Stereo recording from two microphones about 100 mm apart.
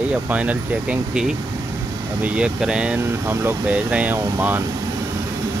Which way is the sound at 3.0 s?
20° right (ahead or behind).